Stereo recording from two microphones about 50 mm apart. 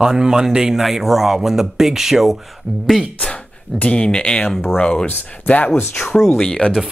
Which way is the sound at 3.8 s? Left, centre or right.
Left.